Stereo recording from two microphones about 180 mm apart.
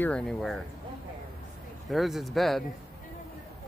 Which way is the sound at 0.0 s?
5° left (ahead or behind).